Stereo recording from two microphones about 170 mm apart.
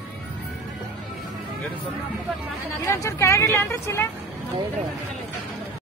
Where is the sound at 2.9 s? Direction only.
15° left (ahead or behind).